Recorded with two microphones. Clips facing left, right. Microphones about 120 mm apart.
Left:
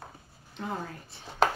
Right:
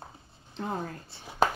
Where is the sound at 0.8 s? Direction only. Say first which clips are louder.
Right 2 dB; 35° right (ahead or behind).